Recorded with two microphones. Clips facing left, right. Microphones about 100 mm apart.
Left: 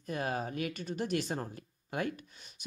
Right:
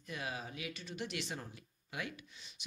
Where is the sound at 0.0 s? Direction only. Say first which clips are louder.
Left 8 dB; 45° left (ahead or behind).